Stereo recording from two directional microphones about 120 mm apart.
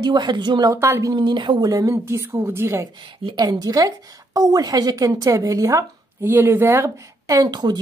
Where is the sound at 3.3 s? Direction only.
35° right (ahead or behind).